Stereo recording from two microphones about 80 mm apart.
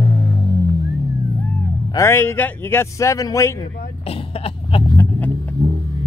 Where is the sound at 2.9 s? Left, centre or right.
Left.